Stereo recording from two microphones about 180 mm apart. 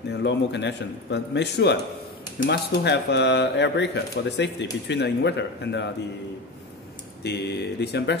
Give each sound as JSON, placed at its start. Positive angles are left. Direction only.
{"t": 0.1, "sound": "speech", "side_deg": 75}
{"t": 7.2, "sound": "speech", "side_deg": 65}